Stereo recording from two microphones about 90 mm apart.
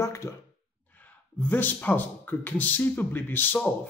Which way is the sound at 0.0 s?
35° left (ahead or behind).